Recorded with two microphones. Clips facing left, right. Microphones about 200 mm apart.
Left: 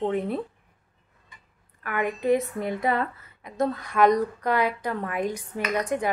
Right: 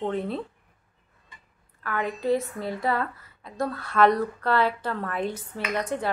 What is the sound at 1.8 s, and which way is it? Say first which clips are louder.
A woman's voice: left 2 dB; 15° left (ahead or behind).